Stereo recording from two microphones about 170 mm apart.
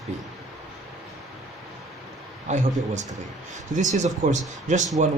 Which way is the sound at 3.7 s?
45° right (ahead or behind).